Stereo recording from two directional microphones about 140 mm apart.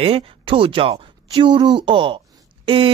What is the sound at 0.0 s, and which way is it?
Speech, 40° right (ahead or behind).